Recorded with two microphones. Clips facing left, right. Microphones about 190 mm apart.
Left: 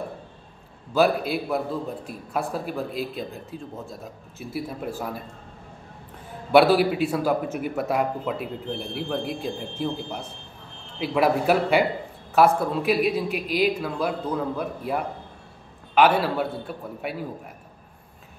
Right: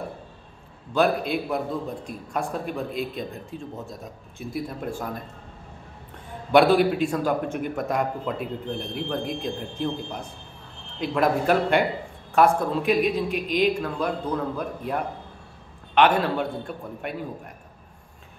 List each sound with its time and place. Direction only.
0.9 s a man's voice: 5° left (ahead or behind)
6.5 s a man's voice: 5° left (ahead or behind)